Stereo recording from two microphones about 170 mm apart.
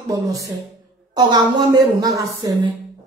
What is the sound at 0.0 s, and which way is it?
A woman's voice, 20° right (ahead or behind).